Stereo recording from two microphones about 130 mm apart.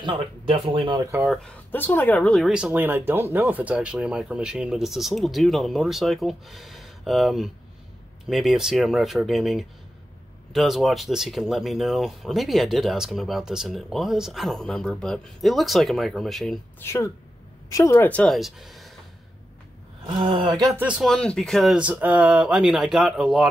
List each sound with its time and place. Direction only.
0.0 s speech: 45° right (ahead or behind)
1.0 s speech: 15° right (ahead or behind)
1.7 s speech: 15° left (ahead or behind)
2.4 s speech: 10° right (ahead or behind)
16.8 s speech: 20° left (ahead or behind)
18.0 s speech: 10° left (ahead or behind)
20.1 s speech: 35° right (ahead or behind)
20.7 s speech: 10° right (ahead or behind)
21.1 s speech: 5° left (ahead or behind)
21.7 s speech: 10° right (ahead or behind)